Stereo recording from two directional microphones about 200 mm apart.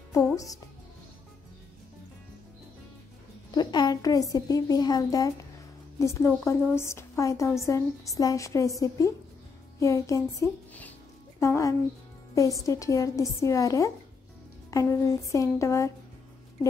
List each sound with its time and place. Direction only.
0.1 s a child's voice: 15° left (ahead or behind)
3.5 s a woman's voice: 20° left (ahead or behind)
11.3 s a woman's voice: 15° left (ahead or behind)